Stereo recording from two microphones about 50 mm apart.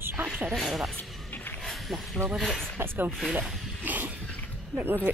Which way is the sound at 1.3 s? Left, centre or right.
Left.